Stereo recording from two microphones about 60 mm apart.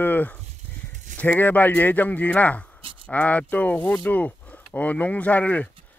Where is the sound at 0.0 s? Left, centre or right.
Left.